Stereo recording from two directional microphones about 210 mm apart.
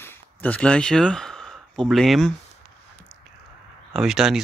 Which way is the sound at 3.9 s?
Centre (ahead or behind).